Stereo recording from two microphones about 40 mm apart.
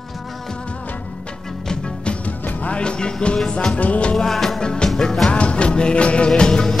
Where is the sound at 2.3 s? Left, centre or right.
Left.